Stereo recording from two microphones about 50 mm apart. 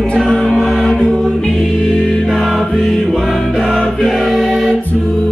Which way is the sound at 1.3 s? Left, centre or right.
Centre.